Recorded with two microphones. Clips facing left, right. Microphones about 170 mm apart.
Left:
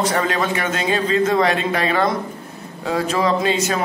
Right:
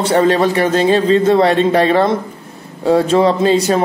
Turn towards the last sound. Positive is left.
turn(degrees=-35)  # may be behind; listen again after turning